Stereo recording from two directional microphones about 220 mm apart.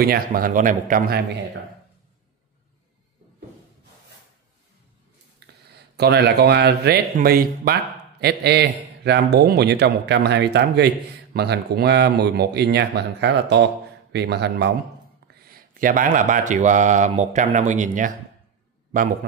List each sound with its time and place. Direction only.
0.0 s speech: 40° right (ahead or behind)
5.4 s a sound: 50° right (ahead or behind)
5.9 s a man's voice: 50° right (ahead or behind)